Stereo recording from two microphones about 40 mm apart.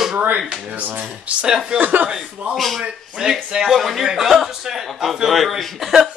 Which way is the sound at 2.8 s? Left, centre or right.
Centre.